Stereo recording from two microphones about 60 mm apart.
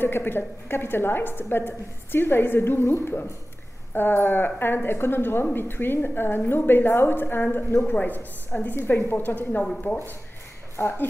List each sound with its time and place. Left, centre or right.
0.0 s a woman's voice: left